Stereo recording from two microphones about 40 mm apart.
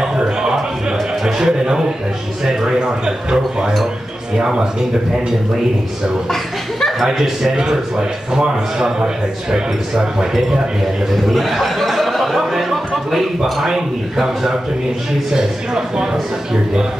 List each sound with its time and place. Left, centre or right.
0.0 s music: centre
1.2 s a man's voice: centre
6.3 s chuckle: centre
7.0 s a man's voice: centre
7.5 s a man's voice: centre
11.2 s a man's voice: centre